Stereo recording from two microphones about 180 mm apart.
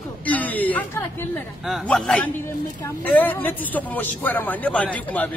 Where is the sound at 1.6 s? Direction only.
Centre (ahead or behind).